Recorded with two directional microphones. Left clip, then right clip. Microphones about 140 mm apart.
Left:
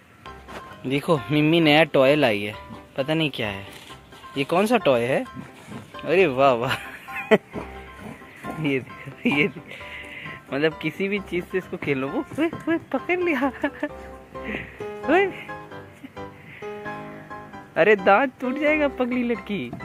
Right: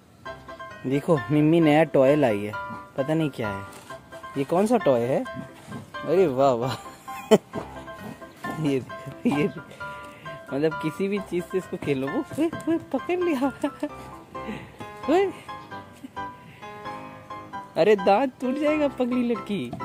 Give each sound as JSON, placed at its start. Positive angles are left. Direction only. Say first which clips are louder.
{"t": 0.8, "sound": "speech", "louder": "left 1 dB", "side_deg": -20}
{"t": 9.2, "sound": "music", "louder": "left 3 dB", "side_deg": -20}
{"t": 11.2, "sound": "speech", "louder": "left 1 dB", "side_deg": -15}
{"t": 14.5, "sound": "music", "louder": "left 6 dB", "side_deg": -20}
{"t": 17.7, "sound": "speech", "louder": "left 2 dB", "side_deg": -25}